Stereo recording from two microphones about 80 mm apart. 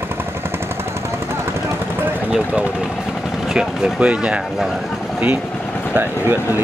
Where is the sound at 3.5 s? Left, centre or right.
Centre.